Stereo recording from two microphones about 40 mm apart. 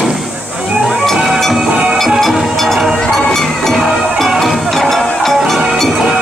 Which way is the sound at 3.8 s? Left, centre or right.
Centre.